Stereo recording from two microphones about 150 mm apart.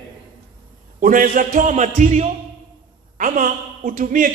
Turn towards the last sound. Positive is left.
turn(degrees=-65)  # may be behind; listen again after turning